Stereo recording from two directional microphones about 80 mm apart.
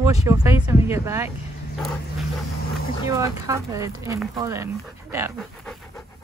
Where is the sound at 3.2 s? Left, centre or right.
Right.